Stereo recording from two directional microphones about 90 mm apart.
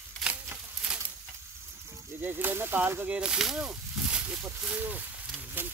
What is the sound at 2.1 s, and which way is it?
Speech, 20° right (ahead or behind).